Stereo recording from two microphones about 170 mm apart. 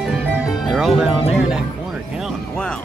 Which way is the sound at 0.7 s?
Centre (ahead or behind).